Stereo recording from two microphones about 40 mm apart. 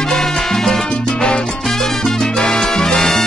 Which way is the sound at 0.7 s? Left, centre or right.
Centre.